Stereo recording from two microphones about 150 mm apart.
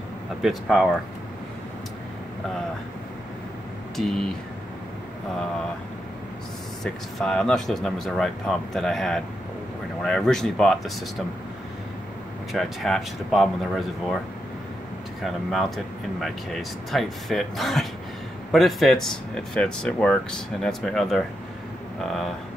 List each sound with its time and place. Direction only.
0.4 s speech: centre (ahead or behind)
3.9 s speech: centre (ahead or behind)
6.8 s speech: 5° left (ahead or behind)
12.5 s speech: centre (ahead or behind)
15.2 s speech: centre (ahead or behind)